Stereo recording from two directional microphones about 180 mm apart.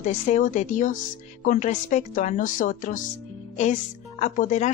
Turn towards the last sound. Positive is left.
turn(degrees=45)  # may be behind; listen again after turning